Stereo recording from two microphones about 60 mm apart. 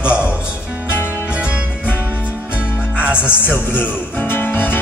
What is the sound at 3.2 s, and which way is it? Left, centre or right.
Music, left.